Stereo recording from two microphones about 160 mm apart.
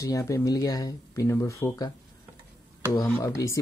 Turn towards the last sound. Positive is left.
turn(degrees=20)  # may be behind; listen again after turning